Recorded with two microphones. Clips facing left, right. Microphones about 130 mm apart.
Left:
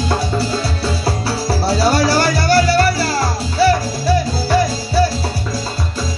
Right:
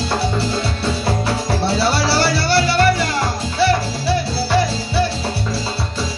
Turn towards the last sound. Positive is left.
turn(degrees=40)  # may be behind; listen again after turning